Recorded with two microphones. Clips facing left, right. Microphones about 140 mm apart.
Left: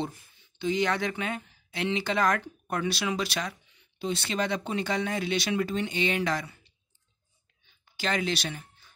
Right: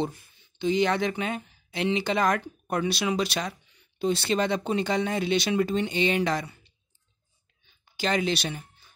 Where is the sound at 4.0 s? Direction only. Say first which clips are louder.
Right 5 dB; 35° right (ahead or behind).